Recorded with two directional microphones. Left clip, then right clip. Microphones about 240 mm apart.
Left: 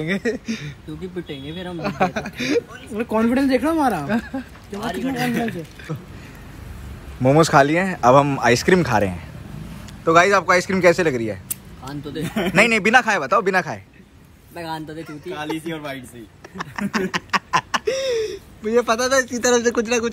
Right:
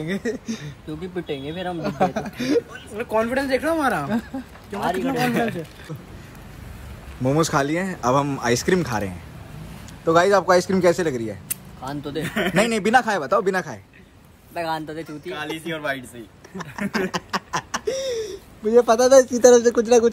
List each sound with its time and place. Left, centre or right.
0.0 s speech: centre
1.3 s speech: right
1.8 s speech: centre
3.0 s speech: centre
3.9 s speech: centre
5.0 s speech: right
5.9 s speech: centre
7.2 s speech: centre
10.0 s speech: centre
12.3 s speech: centre
12.5 s speech: centre
15.0 s speech: centre
16.5 s a sound: centre
19.8 s speech: centre